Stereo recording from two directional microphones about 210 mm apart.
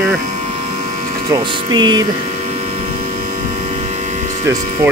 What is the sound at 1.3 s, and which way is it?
Speech, 20° right (ahead or behind).